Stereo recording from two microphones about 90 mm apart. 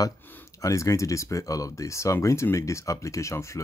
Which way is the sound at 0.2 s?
20° left (ahead or behind).